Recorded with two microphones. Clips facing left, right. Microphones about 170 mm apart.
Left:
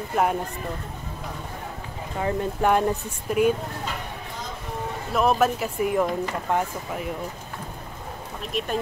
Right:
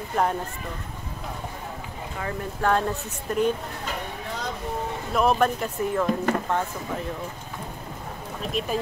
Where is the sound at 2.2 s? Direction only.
15° left (ahead or behind).